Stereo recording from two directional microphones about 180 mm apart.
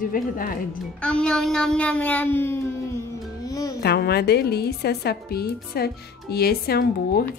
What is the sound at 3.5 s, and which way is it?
Music, 20° left (ahead or behind).